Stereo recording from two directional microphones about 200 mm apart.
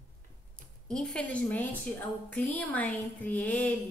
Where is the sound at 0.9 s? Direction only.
5° left (ahead or behind).